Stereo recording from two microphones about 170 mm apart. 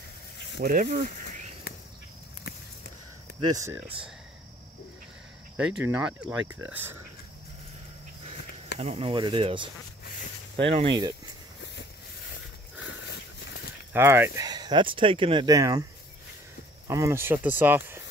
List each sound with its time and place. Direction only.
0.6 s speech: 60° right (ahead or behind)
3.3 s speech: 20° right (ahead or behind)
5.6 s speech: 5° right (ahead or behind)
8.7 s speech: 40° right (ahead or behind)
13.9 s speech: 15° right (ahead or behind)
16.8 s speech: 20° right (ahead or behind)